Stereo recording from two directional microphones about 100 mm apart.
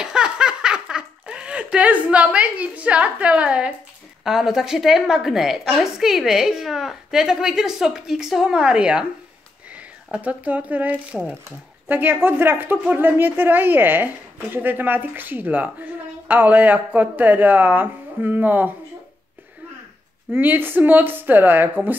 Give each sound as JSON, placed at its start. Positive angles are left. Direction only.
{"t": 0.0, "sound": "a sound", "side_deg": -10}
{"t": 4.2, "sound": "a woman's voice", "side_deg": -5}
{"t": 20.2, "sound": "a woman's voice", "side_deg": -20}